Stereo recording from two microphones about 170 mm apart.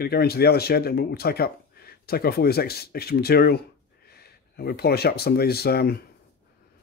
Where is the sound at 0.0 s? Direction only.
65° left (ahead or behind).